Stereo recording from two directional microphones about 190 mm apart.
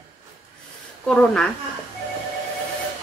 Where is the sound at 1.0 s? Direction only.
5° left (ahead or behind).